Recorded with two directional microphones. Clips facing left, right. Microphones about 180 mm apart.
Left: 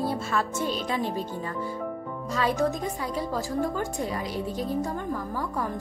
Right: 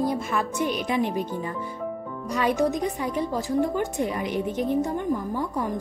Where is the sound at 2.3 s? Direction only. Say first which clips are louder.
Right 3 dB; 15° right (ahead or behind).